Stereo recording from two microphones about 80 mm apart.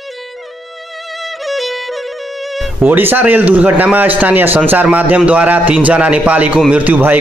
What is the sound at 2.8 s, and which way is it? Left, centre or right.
A man's voice, right.